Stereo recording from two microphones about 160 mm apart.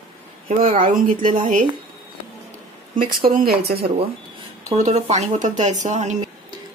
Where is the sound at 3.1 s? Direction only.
65° right (ahead or behind).